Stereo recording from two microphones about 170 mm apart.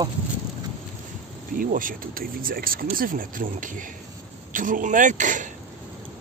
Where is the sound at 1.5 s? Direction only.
55° right (ahead or behind).